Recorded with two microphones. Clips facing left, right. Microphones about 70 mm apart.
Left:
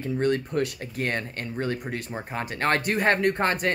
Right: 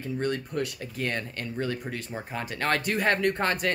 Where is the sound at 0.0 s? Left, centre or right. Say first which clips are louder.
Left 5 dB; left.